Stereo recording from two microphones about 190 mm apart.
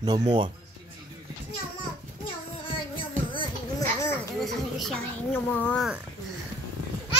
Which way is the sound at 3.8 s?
15° left (ahead or behind).